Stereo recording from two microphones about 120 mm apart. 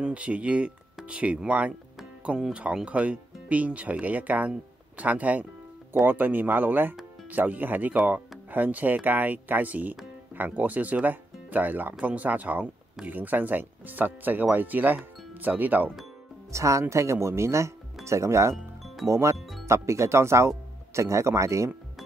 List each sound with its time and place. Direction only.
0.0 s speech: 10° right (ahead or behind)
16.5 s speech: 25° right (ahead or behind)
18.5 s music: centre (ahead or behind)
19.0 s speech: 25° right (ahead or behind)
19.3 s speech: centre (ahead or behind)
19.6 s speech: 25° right (ahead or behind)